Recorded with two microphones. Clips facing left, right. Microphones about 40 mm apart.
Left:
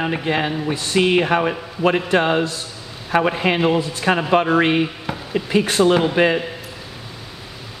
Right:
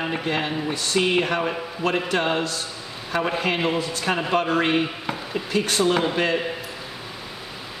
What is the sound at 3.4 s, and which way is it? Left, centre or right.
Speech, centre.